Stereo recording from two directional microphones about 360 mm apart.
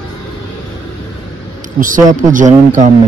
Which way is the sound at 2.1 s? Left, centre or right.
Right.